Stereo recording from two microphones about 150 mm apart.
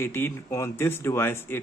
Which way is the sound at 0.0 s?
15° left (ahead or behind).